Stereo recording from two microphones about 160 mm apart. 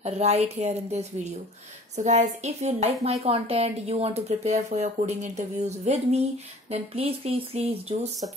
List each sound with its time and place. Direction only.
0.0 s speech: 40° right (ahead or behind)